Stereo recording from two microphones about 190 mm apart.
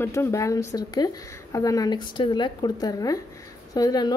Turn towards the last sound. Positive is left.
turn(degrees=20)  # may be behind; listen again after turning